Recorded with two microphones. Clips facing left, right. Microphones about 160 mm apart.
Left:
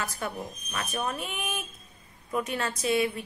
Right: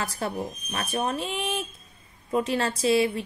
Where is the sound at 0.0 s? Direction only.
30° right (ahead or behind).